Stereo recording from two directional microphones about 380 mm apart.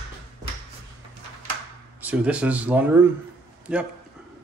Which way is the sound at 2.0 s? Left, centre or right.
Centre.